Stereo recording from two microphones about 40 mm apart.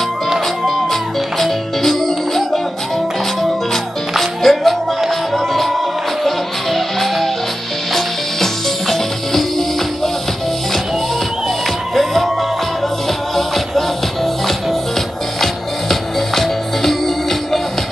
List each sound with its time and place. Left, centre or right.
1.4 s music: centre
4.2 s music: centre
11.9 s music: centre
13.7 s music: centre